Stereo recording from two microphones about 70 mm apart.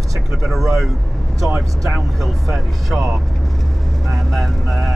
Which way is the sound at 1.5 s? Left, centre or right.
Centre.